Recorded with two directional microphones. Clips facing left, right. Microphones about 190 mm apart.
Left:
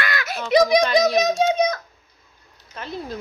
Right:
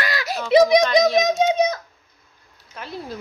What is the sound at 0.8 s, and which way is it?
Speech, 5° left (ahead or behind).